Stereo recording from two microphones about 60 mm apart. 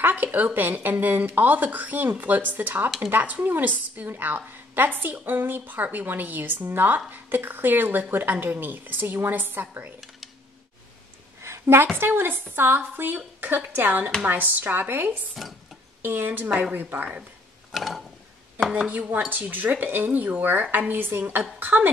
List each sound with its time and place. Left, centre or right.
0.0 s a woman's voice: right
11.4 s a sound: right
12.0 s a woman's voice: right
17.7 s mechanisms: centre
19.1 s a woman's voice: right